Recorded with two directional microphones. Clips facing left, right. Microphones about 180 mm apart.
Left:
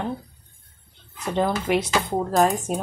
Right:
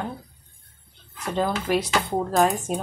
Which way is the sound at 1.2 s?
20° left (ahead or behind).